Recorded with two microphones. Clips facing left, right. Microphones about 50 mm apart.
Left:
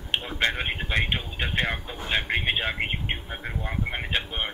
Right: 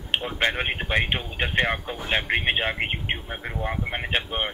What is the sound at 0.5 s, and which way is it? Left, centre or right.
Speech, right.